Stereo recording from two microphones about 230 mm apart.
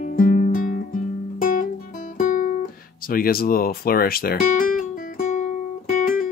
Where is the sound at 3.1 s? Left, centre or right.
Left.